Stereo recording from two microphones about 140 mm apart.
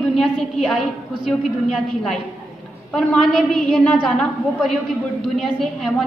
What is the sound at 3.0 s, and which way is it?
A woman's voice, 5° left (ahead or behind).